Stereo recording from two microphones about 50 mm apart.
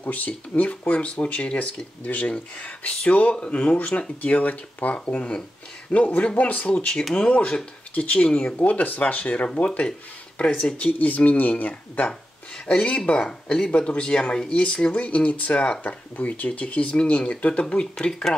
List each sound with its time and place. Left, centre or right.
0.0 s speech: left
6.7 s speech: centre
7.2 s speech: left
10.8 s speech: left